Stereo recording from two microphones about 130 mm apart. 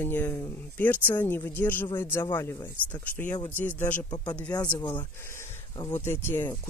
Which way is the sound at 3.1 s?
15° left (ahead or behind).